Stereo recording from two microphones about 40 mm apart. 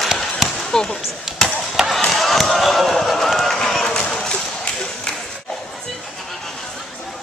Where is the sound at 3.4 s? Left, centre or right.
Centre.